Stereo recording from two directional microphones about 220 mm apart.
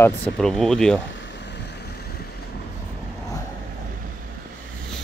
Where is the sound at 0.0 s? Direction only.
5° left (ahead or behind).